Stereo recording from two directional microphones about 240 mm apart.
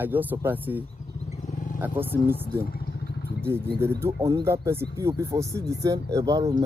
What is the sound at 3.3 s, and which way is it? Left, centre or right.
Speech, centre.